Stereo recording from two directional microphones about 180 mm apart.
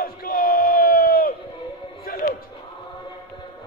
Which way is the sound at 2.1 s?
55° left (ahead or behind).